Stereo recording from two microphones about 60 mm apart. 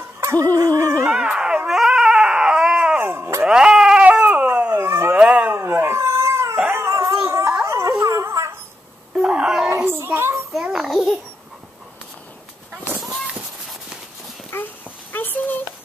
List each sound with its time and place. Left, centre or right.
0.2 s fowl: right
0.6 s a sound: right
1.0 s a sound: centre
1.7 s dog: centre
3.0 s dog: right
3.4 s a sound: centre
5.1 s dog: centre
5.5 s dog: right
7.6 s howl: right
8.0 s dog: right
9.2 s wail: centre
9.8 s child singing: right
10.7 s babbling: centre
14.5 s a sound: left